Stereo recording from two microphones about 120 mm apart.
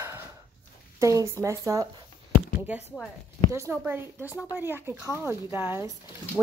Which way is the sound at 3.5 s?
20° right (ahead or behind).